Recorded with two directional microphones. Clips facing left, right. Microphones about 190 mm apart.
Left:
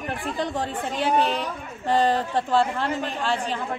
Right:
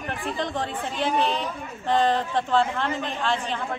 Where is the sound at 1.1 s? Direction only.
40° left (ahead or behind).